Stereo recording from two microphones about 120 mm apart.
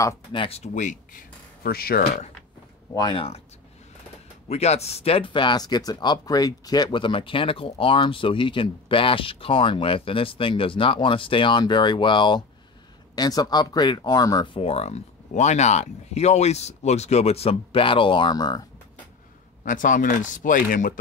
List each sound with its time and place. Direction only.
0.3 s speech: 50° left (ahead or behind)
3.0 s speech: 40° left (ahead or behind)
4.5 s speech: 60° left (ahead or behind); by 18.7 s 35° left (ahead or behind)
19.6 s speech: 90° left